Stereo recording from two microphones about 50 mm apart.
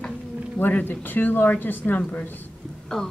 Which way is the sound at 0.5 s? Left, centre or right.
Left.